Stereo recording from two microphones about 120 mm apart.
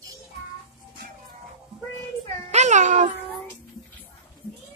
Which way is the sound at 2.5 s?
80° right.